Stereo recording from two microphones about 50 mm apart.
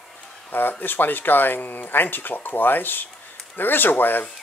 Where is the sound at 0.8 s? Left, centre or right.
Left.